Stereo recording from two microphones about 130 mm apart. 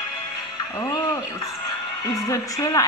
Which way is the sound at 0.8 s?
30° left (ahead or behind).